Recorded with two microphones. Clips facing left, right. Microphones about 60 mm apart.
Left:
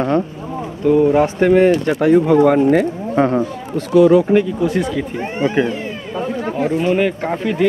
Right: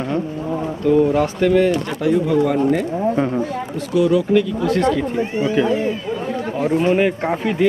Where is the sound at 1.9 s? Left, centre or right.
Left.